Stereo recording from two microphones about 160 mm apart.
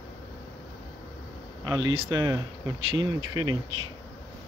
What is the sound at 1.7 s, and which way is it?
Speech, 30° right (ahead or behind).